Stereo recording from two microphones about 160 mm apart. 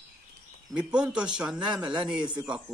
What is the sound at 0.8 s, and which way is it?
A man's voice, 5° right (ahead or behind).